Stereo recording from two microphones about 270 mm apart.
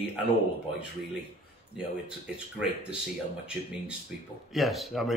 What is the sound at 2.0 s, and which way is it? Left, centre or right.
Speech, centre.